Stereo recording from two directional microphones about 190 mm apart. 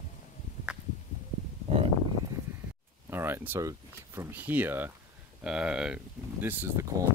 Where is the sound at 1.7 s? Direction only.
35° right (ahead or behind).